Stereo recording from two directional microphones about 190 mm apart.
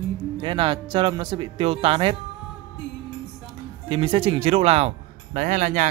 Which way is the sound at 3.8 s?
30° right (ahead or behind).